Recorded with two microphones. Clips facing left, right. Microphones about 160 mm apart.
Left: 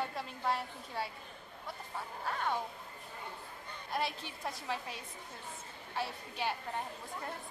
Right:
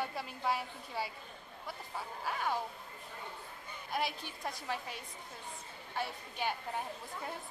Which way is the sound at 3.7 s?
Centre (ahead or behind).